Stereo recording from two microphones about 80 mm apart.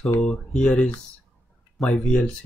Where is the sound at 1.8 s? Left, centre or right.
Centre.